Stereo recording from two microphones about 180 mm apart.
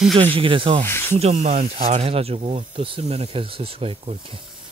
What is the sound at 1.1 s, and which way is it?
Speech, 35° right (ahead or behind).